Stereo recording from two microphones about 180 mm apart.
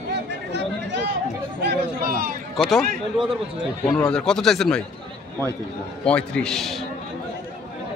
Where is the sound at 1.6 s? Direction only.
60° right (ahead or behind).